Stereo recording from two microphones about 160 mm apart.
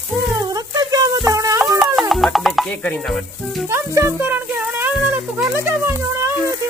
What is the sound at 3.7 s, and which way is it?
Speech, 15° right (ahead or behind).